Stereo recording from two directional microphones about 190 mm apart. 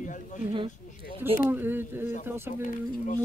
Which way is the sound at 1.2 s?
10° right (ahead or behind).